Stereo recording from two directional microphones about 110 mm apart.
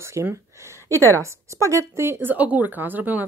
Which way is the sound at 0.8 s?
25° left (ahead or behind).